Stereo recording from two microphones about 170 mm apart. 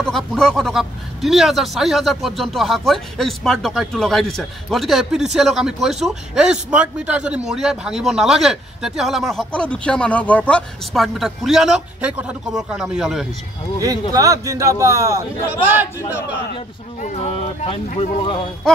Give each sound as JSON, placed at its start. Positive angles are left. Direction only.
{"t": 0.0, "sound": "speech", "side_deg": 5}
{"t": 14.1, "sound": "speech", "side_deg": -20}
{"t": 17.0, "sound": "speech", "side_deg": 35}